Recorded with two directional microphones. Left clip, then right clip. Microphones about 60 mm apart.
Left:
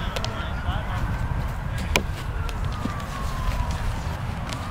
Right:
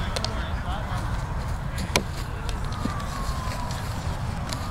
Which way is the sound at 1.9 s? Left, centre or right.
Centre.